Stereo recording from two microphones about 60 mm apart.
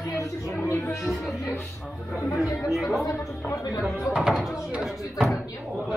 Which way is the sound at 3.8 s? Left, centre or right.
Centre.